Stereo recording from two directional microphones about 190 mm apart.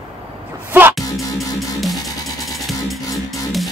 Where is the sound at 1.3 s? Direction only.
Centre (ahead or behind).